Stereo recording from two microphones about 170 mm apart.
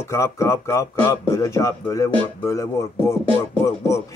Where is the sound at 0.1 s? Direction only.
15° left (ahead or behind).